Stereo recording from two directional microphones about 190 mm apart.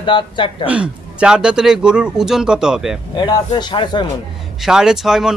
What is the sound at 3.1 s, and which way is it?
Speech, 20° left (ahead or behind).